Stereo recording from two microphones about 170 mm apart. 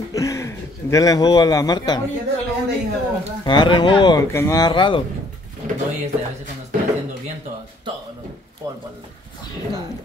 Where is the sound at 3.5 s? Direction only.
25° left (ahead or behind).